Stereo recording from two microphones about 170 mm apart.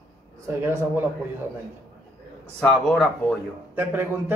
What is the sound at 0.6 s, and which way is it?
Speech, 15° right (ahead or behind).